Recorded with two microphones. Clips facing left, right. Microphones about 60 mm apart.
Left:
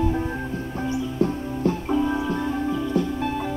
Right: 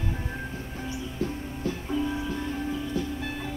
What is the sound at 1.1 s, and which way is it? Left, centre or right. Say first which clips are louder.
Music: left 8 dB; left.